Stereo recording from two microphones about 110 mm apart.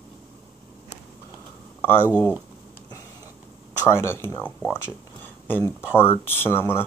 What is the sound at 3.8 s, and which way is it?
Speech, 25° left (ahead or behind).